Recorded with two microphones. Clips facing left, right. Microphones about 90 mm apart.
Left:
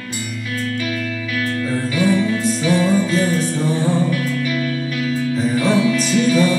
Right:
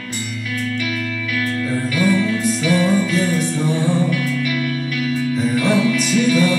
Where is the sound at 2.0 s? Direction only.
25° left (ahead or behind).